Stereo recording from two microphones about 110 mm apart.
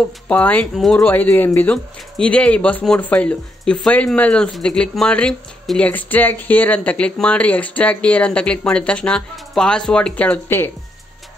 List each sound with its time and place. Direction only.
0.3 s speech: 15° left (ahead or behind)
0.7 s speech: centre (ahead or behind)
1.0 s speech: 15° left (ahead or behind)